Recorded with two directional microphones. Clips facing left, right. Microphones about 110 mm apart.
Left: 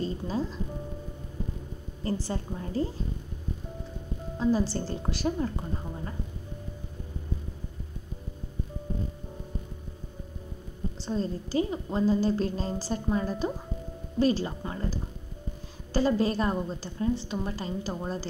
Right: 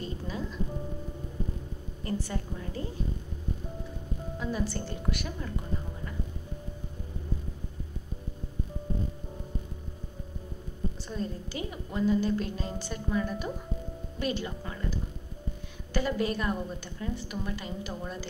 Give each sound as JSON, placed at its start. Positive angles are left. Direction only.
{"t": 0.0, "sound": "music", "side_deg": 30}
{"t": 2.0, "sound": "a woman's voice", "side_deg": 30}
{"t": 4.4, "sound": "a woman's voice", "side_deg": 30}
{"t": 11.0, "sound": "a woman's voice", "side_deg": 30}